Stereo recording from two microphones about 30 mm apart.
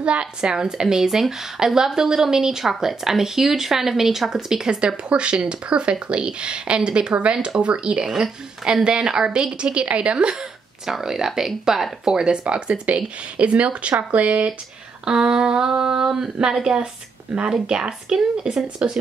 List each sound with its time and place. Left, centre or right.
0.0 s speech: right
0.5 s speech: right
4.6 s speech: right
8.1 s speech: centre
8.8 s speech: right
10.9 s speech: centre
12.4 s speech: right
15.0 s speech: right
18.8 s speech: right